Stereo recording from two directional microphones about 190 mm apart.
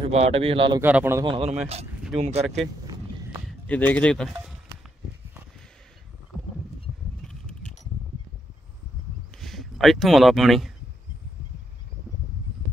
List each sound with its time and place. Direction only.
0.0 s a man's voice: 30° right (ahead or behind)
0.7 s a man's voice: 10° right (ahead or behind)
1.2 s a man's voice: 30° right (ahead or behind)
2.4 s speech: centre (ahead or behind)
9.4 s speech: centre (ahead or behind)